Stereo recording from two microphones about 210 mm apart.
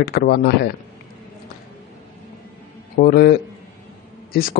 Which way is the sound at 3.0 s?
45° left (ahead or behind).